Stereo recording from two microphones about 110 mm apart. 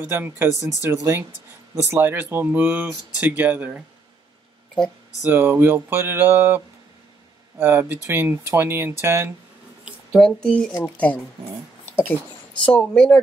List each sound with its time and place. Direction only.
0.0 s speech: 20° right (ahead or behind)
5.2 s speech: 20° right (ahead or behind)
10.1 s speech: 5° left (ahead or behind)
11.8 s a sound: 20° left (ahead or behind)
12.6 s speech: 15° left (ahead or behind)